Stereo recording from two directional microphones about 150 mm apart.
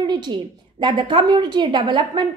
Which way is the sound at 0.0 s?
30° right (ahead or behind).